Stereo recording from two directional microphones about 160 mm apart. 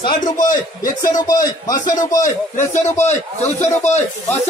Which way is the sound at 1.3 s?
20° left (ahead or behind).